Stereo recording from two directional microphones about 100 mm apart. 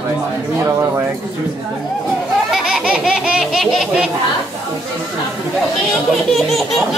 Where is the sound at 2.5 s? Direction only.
5° right (ahead or behind).